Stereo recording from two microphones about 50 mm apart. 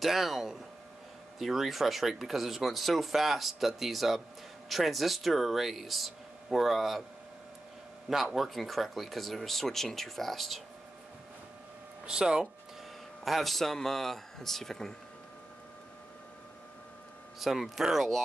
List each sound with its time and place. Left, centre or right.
0.0 s speech: centre
8.4 s speech: centre
12.1 s speech: centre
13.2 s speech: centre
17.4 s speech: centre